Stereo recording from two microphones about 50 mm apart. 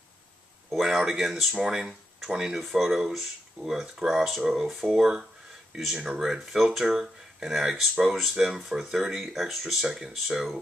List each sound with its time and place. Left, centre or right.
0.7 s speech: centre
6.2 s speech: centre